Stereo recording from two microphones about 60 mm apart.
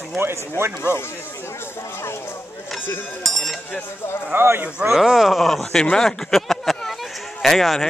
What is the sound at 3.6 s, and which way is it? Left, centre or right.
Speech, left.